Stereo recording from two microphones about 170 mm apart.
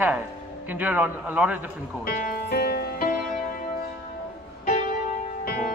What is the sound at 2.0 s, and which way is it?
Music, 60° left (ahead or behind).